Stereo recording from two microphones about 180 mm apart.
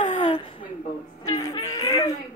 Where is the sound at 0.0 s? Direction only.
40° left (ahead or behind).